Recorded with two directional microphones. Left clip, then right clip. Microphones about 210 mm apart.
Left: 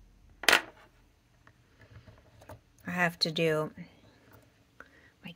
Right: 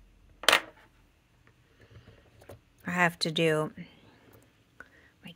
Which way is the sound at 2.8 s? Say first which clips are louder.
Right 2 dB; 15° right (ahead or behind).